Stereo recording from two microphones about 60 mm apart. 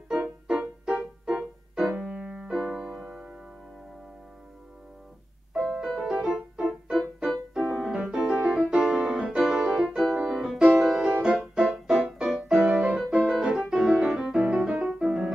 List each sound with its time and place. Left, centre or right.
0.1 s music: centre
2.0 s music: right
2.5 s music: centre
5.7 s music: centre
14.8 s piano: centre